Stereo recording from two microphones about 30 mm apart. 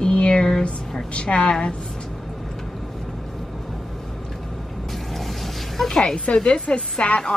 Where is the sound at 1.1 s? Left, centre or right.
Left.